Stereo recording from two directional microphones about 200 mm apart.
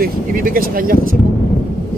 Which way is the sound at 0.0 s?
45° right (ahead or behind).